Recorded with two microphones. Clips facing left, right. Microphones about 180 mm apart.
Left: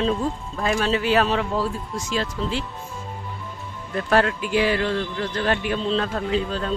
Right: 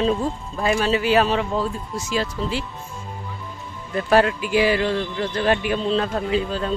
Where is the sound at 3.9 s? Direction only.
5° right (ahead or behind).